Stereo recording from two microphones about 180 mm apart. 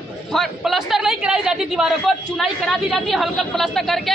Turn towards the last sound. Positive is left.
turn(degrees=0)  # may be behind; listen again after turning